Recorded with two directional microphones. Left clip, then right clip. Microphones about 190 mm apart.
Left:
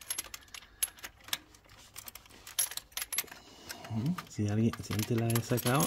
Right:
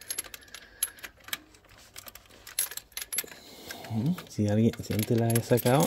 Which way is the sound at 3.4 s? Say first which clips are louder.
Right 4 dB; 25° right (ahead or behind).